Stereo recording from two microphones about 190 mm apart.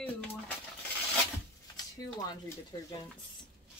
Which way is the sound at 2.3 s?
20° left (ahead or behind).